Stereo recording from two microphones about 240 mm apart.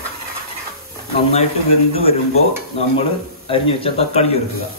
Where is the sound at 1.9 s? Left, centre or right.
Left.